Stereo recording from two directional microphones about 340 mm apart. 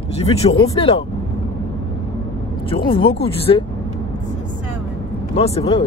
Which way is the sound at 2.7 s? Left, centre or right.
Centre.